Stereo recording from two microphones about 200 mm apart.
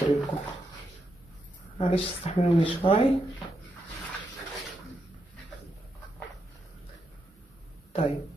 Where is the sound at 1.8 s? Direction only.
35° left (ahead or behind).